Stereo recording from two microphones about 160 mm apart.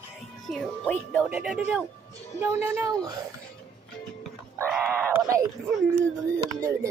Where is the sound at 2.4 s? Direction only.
15° right (ahead or behind).